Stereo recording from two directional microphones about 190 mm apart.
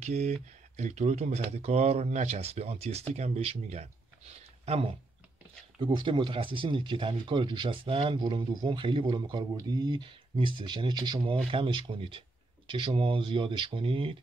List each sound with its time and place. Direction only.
0.0 s speech: 35° right (ahead or behind)
5.8 s speech: 25° right (ahead or behind)